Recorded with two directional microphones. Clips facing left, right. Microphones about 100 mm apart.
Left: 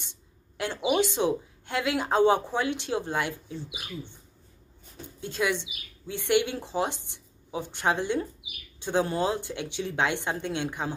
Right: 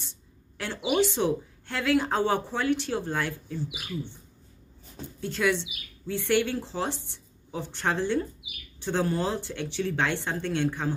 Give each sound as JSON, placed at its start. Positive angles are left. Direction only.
{"t": 0.0, "sound": "a sound", "side_deg": 15}
{"t": 1.1, "sound": "speech", "side_deg": 15}
{"t": 5.2, "sound": "speech", "side_deg": 15}